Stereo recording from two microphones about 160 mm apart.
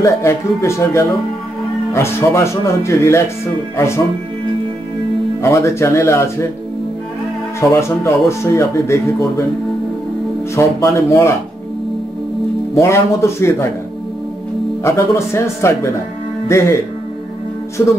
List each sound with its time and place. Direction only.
0.0 s speech: 15° left (ahead or behind)
5.4 s speech: 15° left (ahead or behind)
7.7 s speech: 20° left (ahead or behind)
10.5 s speech: 20° left (ahead or behind)
12.7 s speech: 15° left (ahead or behind)
14.8 s speech: 15° left (ahead or behind)